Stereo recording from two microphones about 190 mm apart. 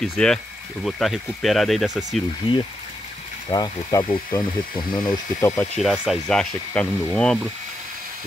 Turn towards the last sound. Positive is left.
turn(degrees=5)  # may be behind; listen again after turning